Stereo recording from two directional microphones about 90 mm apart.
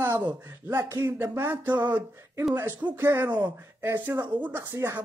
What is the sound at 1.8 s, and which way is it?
Speech, 20° right (ahead or behind).